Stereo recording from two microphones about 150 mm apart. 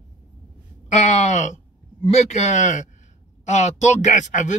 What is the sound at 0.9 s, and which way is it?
Speech, 50° left (ahead or behind).